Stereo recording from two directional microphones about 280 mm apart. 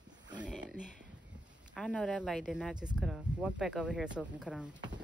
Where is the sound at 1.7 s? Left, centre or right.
Centre.